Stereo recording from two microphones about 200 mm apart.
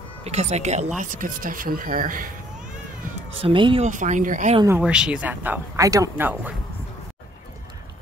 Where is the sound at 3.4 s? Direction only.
25° right (ahead or behind).